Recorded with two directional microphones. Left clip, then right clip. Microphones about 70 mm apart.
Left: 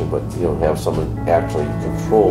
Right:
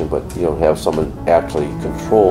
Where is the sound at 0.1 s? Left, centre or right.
Right.